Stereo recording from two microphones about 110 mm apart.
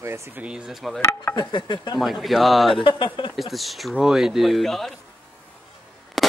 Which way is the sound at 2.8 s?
50° left (ahead or behind).